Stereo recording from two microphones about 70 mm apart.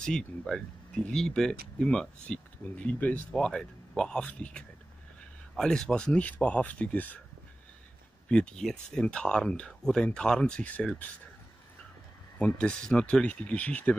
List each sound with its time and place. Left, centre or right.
0.0 s speech: centre
3.3 s speech: centre
8.3 s speech: centre
10.6 s speech: left
12.4 s speech: centre